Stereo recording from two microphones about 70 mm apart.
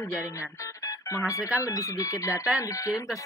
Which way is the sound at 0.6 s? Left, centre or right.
Left.